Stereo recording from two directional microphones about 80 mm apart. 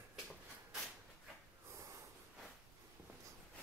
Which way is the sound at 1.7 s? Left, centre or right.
Right.